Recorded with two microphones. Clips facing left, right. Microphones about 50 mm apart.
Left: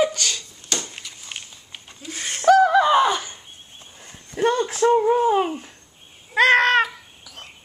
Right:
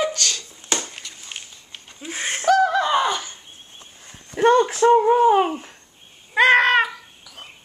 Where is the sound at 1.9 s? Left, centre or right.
Right.